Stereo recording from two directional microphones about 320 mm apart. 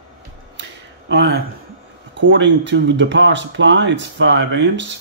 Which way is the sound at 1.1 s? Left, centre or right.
Right.